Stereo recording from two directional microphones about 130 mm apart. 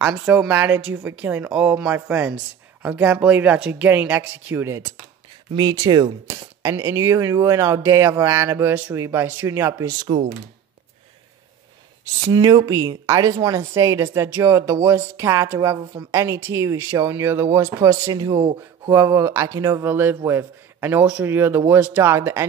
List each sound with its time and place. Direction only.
0.0 s speech: 10° right (ahead or behind)
5.5 s speech: 35° right (ahead or behind)
6.2 s speech: 20° right (ahead or behind)
12.2 s speech: 30° right (ahead or behind)
18.9 s speech: 20° right (ahead or behind)